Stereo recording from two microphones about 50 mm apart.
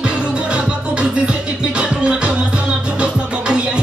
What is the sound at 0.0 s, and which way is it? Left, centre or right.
Music, right.